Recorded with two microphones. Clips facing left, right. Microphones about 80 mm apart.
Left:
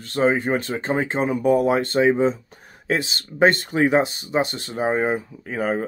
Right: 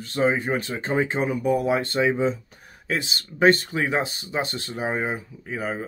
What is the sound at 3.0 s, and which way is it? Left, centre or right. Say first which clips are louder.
Speech: left 2 dB; left.